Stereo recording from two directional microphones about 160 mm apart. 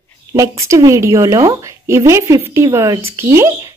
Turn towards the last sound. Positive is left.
turn(degrees=-15)  # may be behind; listen again after turning